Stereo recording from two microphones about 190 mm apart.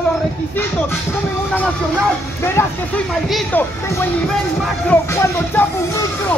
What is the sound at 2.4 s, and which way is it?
Speech, 10° left (ahead or behind).